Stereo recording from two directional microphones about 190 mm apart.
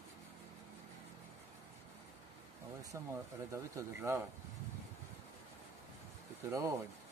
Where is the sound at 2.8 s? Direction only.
15° right (ahead or behind).